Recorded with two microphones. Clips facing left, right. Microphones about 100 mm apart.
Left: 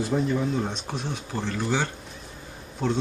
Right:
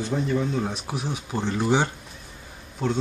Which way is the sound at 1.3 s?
20° right (ahead or behind).